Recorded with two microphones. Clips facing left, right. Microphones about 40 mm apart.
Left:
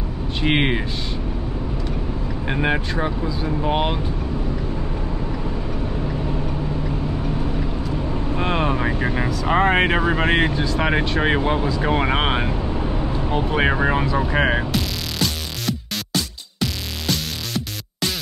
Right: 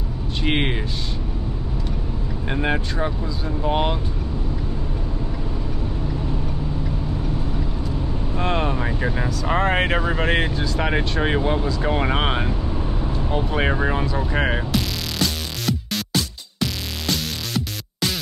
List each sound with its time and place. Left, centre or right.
0.4 s speech: centre
2.4 s speech: centre
8.4 s speech: centre